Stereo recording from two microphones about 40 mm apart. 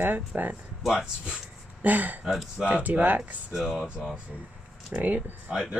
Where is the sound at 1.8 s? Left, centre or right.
Right.